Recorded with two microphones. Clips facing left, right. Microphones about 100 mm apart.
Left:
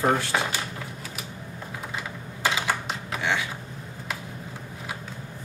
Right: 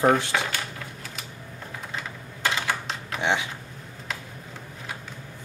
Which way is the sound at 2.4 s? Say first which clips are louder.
Left 1 dB; 5° left (ahead or behind).